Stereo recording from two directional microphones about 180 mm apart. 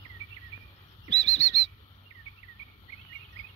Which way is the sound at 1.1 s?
35° left (ahead or behind).